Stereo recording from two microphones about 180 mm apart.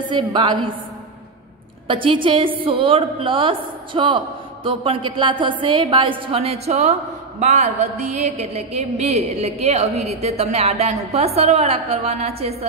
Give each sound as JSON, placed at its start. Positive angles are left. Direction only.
{"t": 0.0, "sound": "a woman's voice", "side_deg": -25}
{"t": 1.9, "sound": "a woman's voice", "side_deg": -30}